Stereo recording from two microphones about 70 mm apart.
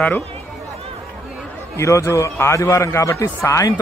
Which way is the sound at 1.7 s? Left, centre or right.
Left.